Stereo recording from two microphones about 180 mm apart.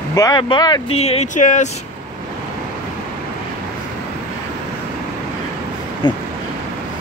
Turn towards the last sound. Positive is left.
turn(degrees=25)  # may be behind; listen again after turning